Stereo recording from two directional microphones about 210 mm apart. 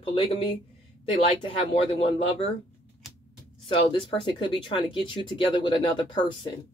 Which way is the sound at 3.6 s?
25° left (ahead or behind).